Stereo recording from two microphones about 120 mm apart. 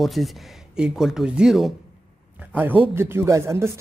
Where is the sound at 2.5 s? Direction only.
15° right (ahead or behind).